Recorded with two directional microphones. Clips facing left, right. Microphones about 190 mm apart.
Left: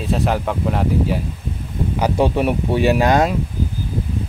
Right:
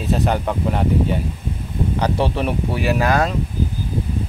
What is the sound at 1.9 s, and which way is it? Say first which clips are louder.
Speech: left 4 dB; 10° left (ahead or behind).